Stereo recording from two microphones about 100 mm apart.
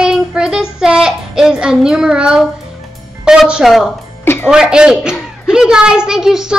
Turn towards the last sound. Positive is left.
turn(degrees=-5)  # may be behind; listen again after turning